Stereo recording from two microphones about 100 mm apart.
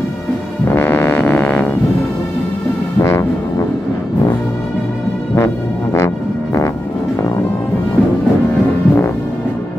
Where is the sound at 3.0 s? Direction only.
30° left (ahead or behind).